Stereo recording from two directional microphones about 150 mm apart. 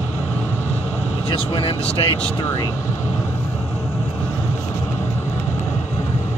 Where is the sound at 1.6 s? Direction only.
40° left (ahead or behind).